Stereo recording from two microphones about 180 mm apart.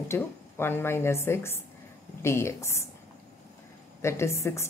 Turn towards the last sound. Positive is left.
turn(degrees=15)  # may be behind; listen again after turning